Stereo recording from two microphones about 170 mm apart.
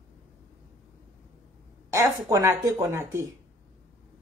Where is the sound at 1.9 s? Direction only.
20° right (ahead or behind).